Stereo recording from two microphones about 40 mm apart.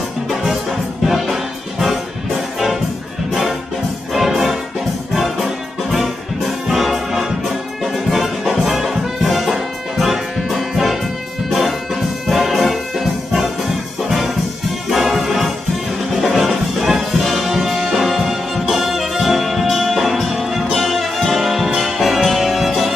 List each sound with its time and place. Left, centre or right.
1.0 s music: centre
4.1 s music: centre
7.8 s brass instrument: centre
14.9 s music: centre